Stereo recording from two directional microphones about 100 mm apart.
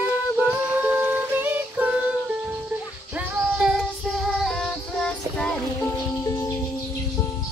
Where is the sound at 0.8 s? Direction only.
20° right (ahead or behind).